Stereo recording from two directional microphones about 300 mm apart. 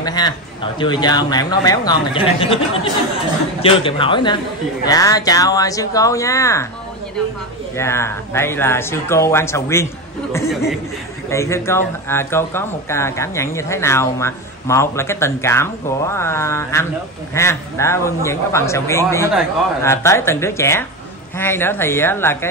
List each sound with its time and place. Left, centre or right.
0.0 s a man's voice: centre
7.7 s speech: centre